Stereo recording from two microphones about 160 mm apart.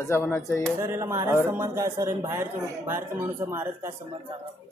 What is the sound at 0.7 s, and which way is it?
Speech, 15° right (ahead or behind).